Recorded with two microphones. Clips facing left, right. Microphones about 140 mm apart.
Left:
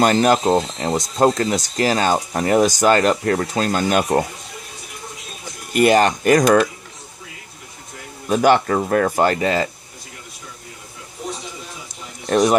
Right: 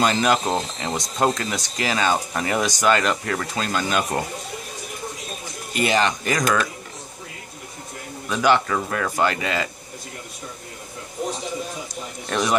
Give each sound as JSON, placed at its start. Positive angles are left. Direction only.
{"t": 0.0, "sound": "speech", "side_deg": 45}
{"t": 5.7, "sound": "speech", "side_deg": 50}
{"t": 8.3, "sound": "speech", "side_deg": 45}
{"t": 12.3, "sound": "speech", "side_deg": 40}